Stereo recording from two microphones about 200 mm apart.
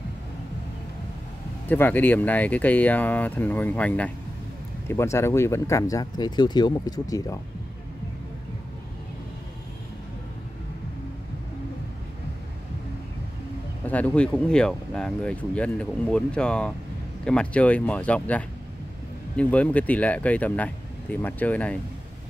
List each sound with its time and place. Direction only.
1.7 s speech: 10° left (ahead or behind)
13.8 s speech: 5° left (ahead or behind)